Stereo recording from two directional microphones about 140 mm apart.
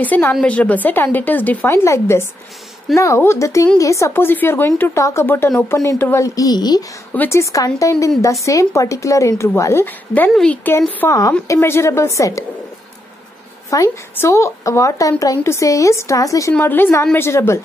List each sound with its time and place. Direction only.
0.0 s a woman's voice: 15° left (ahead or behind)
11.0 s a woman's voice: 20° left (ahead or behind)
13.7 s a woman's voice: 20° left (ahead or behind)